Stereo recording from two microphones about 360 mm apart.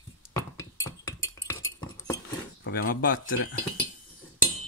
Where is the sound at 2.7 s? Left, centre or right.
Left.